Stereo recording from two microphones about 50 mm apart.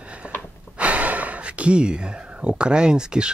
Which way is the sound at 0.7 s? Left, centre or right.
Right.